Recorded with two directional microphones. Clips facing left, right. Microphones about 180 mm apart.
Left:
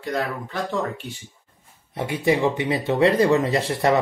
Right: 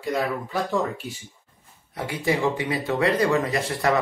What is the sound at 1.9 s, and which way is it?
Speech, 20° left (ahead or behind).